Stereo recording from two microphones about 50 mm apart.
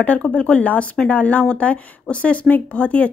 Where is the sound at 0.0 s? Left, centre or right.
Left.